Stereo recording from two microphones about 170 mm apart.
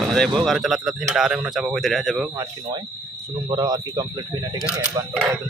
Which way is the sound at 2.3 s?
20° right (ahead or behind).